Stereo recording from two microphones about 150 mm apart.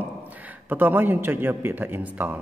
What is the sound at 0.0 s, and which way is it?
A man's voice, 10° right (ahead or behind).